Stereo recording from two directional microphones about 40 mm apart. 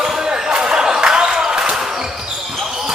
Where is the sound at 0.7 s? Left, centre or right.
Centre.